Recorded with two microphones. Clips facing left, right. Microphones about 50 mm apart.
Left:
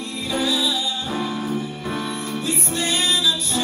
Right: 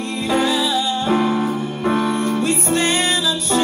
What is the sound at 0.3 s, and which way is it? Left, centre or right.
Music, right.